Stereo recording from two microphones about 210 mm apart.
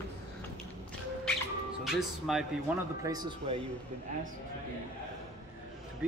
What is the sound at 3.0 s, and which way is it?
Speech, 20° right (ahead or behind).